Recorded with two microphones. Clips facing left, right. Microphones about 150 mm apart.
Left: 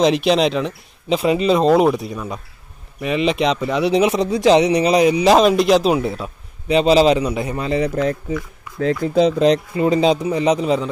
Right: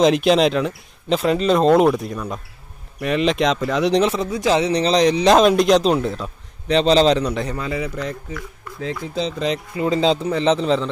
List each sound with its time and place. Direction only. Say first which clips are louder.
0.0 s speech: even; centre (ahead or behind)
4.1 s a man's voice: left 5 dB; 20° left (ahead or behind)
7.5 s a man's voice: left 5 dB; 25° left (ahead or behind)
8.0 s speech: left 7 dB; 5° left (ahead or behind)
8.7 s speech: left 9 dB; 55° left (ahead or behind)
9.8 s a man's voice: left 3 dB; 20° left (ahead or behind)